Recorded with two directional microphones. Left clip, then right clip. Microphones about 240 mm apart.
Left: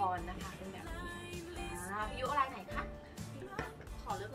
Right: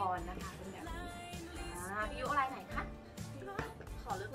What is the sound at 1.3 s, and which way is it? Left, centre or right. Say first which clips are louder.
Music: left 2 dB; centre.